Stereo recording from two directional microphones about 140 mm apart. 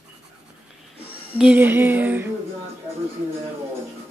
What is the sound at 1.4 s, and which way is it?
Speech, 10° right (ahead or behind).